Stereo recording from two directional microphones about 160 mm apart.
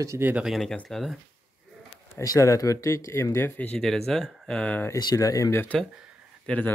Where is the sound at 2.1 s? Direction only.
20° left (ahead or behind).